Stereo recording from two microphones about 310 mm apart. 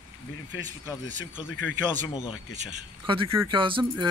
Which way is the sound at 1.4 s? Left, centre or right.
Left.